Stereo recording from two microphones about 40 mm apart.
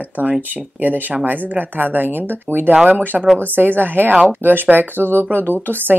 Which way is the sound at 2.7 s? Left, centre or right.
Right.